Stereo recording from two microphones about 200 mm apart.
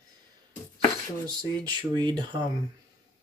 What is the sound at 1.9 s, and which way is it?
Speech, 25° right (ahead or behind).